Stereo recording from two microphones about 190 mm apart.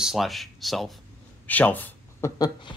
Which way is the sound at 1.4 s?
10° left (ahead or behind).